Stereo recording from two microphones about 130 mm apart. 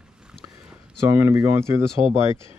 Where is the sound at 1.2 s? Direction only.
20° right (ahead or behind).